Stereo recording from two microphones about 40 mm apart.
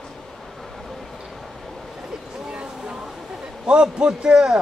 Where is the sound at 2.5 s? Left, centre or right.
Centre.